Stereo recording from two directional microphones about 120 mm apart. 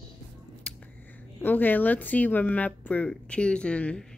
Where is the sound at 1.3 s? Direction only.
15° left (ahead or behind).